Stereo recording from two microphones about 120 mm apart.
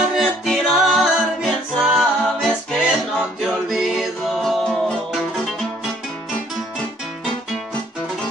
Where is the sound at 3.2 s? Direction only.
Centre (ahead or behind).